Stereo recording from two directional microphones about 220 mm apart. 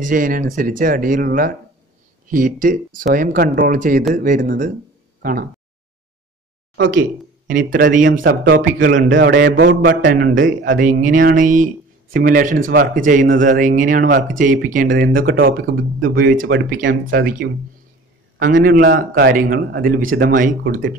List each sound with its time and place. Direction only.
0.0 s speech: 40° right (ahead or behind)
7.0 s speech: 40° right (ahead or behind)
9.1 s speech: 55° right (ahead or behind)
9.4 s speech: 40° right (ahead or behind)
17.0 s speech: 55° right (ahead or behind)
18.4 s speech: 40° right (ahead or behind)